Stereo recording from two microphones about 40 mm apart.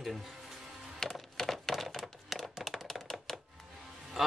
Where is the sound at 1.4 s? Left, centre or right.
Centre.